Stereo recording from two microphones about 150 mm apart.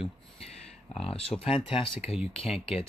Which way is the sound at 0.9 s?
40° left (ahead or behind).